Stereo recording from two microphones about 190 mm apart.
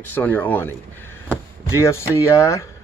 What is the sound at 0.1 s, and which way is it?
Speech, 10° left (ahead or behind).